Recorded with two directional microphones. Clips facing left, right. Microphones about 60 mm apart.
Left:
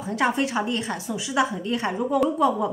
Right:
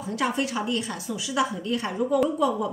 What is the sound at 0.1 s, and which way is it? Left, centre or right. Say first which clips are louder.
A woman's voice: left 3 dB; left.